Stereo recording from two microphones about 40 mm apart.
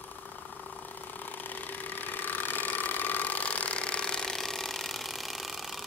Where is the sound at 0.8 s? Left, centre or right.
Left; by 4.3 s centre.